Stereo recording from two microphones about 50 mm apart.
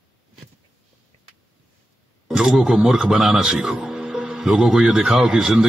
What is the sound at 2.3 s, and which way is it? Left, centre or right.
A man's voice, centre.